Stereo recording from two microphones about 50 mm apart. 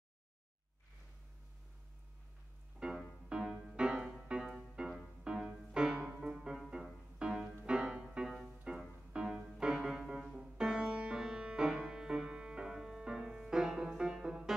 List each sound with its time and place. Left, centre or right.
2.8 s music: centre